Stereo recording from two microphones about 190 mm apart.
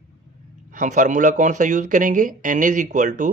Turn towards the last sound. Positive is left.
turn(degrees=-40)  # may be behind; listen again after turning